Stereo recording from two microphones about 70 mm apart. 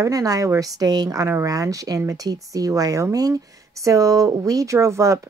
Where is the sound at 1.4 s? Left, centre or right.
Right.